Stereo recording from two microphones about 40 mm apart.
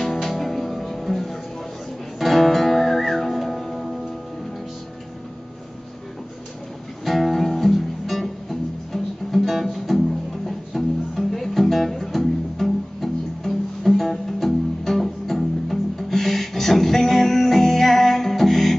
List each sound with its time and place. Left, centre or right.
0.0 s music: centre
7.1 s music: centre